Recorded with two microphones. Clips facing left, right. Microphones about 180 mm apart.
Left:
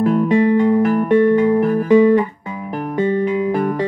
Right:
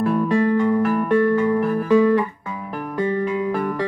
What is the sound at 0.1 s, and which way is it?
Music, 15° left (ahead or behind).